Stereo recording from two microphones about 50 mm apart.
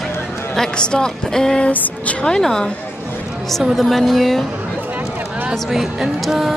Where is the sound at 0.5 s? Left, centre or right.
Centre.